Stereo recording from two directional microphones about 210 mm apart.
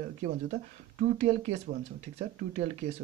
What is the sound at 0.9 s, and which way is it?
Speech, 35° right (ahead or behind).